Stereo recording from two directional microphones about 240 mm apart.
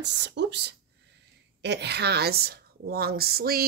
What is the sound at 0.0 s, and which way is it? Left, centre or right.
A woman's voice, right.